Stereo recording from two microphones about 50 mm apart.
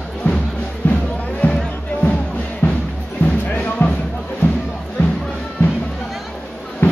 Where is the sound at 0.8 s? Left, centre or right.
Left.